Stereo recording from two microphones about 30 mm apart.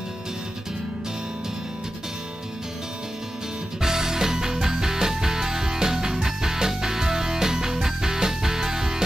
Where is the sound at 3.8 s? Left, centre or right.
Centre.